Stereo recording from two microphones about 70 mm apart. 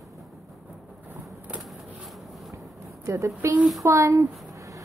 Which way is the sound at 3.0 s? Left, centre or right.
Right.